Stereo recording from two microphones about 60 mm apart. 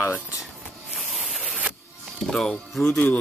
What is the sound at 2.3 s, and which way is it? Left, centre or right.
Speech, centre.